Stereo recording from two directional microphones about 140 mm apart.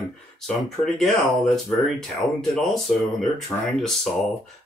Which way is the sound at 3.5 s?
15° left (ahead or behind).